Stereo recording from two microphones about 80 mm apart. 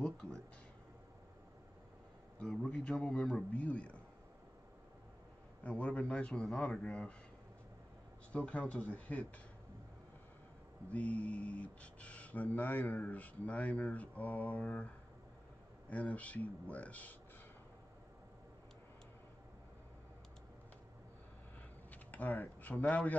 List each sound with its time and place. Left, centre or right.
0.0 s a sound: centre
2.4 s a man's voice: centre
5.6 s a man's voice: centre
8.3 s a man's voice: centre
10.9 s speech: centre
15.9 s speech: centre
21.9 s speech: left